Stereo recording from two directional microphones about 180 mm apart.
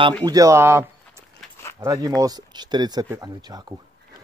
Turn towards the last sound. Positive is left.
turn(degrees=-20)  # may be behind; listen again after turning